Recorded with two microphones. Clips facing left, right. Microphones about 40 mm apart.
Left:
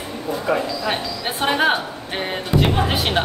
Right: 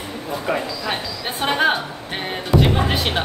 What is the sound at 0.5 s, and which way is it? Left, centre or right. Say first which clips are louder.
Speech: left 2 dB; centre.